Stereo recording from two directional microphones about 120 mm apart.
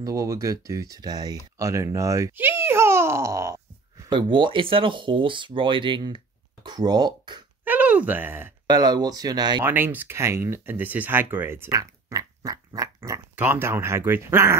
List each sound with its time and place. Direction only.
0.0 s a child's voice: 25° right (ahead or behind)
4.1 s speech: 40° right (ahead or behind)
7.6 s speech: 15° right (ahead or behind)
8.6 s speech: 35° right (ahead or behind)
9.7 s speech: 15° right (ahead or behind)